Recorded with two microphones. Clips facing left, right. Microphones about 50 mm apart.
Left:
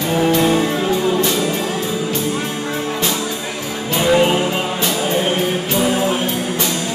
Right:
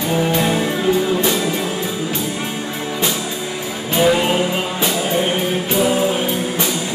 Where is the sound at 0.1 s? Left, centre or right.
Centre.